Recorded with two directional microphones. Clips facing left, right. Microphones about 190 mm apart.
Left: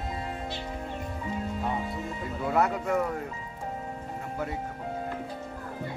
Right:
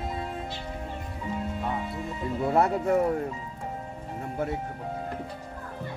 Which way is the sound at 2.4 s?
30° right (ahead or behind).